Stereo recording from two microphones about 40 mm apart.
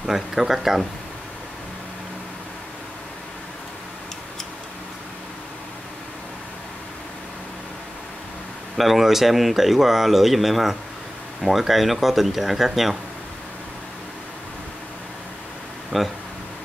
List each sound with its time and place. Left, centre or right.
0.0 s speech: centre
8.7 s speech: centre
15.9 s speech: right